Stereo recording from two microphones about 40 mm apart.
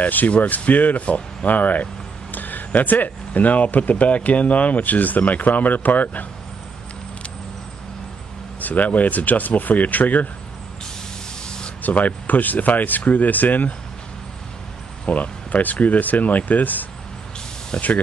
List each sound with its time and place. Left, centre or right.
0.0 s speech: left
8.5 s speech: left
11.4 s spray: centre
11.8 s speech: left
15.0 s speech: left